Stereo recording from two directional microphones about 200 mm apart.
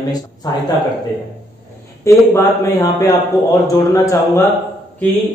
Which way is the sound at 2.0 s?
15° left (ahead or behind).